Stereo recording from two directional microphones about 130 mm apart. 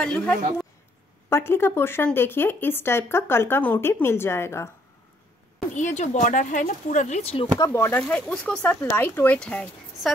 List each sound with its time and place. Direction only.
0.0 s speech: 10° left (ahead or behind)
5.8 s speech: 70° left (ahead or behind); by 7.4 s 50° left (ahead or behind)
7.5 s speech: 25° left (ahead or behind); by 10.1 s 5° left (ahead or behind)